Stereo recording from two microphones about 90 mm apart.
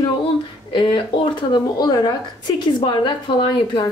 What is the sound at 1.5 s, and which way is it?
A woman's voice, 50° left (ahead or behind).